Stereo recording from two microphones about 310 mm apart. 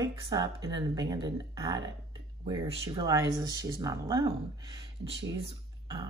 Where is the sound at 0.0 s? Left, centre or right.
Centre.